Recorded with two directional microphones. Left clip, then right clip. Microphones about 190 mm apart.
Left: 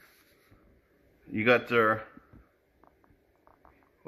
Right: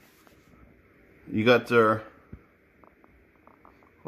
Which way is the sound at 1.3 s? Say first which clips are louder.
Right 3 dB; 20° right (ahead or behind).